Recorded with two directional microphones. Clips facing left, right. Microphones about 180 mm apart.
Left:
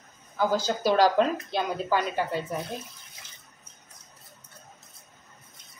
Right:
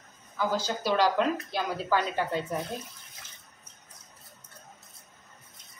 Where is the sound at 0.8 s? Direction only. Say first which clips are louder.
Left 4 dB; 40° left (ahead or behind).